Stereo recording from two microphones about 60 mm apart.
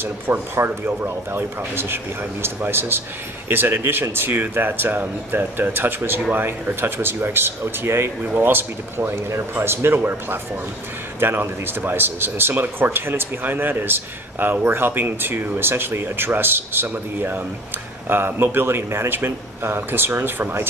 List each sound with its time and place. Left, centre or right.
0.0 s speech: right